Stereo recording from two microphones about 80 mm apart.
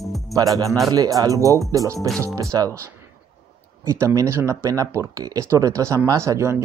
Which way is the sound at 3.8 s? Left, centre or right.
Right.